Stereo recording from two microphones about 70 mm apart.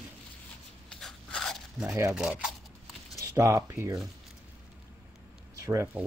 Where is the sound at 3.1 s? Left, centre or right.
Right.